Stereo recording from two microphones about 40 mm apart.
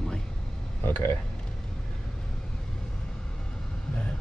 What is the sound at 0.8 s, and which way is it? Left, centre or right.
Speech, left.